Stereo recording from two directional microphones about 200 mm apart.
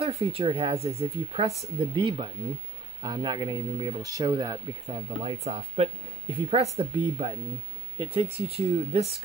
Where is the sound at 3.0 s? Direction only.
20° right (ahead or behind).